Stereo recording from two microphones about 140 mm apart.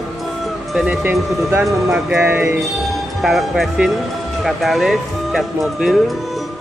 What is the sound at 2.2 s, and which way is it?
Speech, 15° right (ahead or behind).